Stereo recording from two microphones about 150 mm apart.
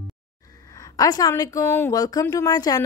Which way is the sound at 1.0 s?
25° left (ahead or behind).